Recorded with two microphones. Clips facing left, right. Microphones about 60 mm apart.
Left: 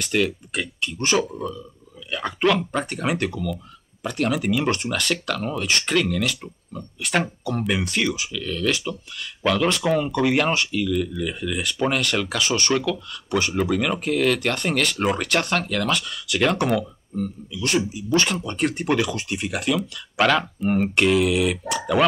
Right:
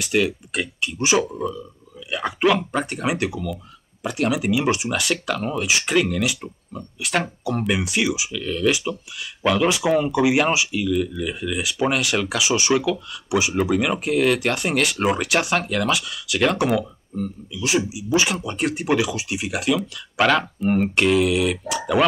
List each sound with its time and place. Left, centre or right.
0.0 s speech: centre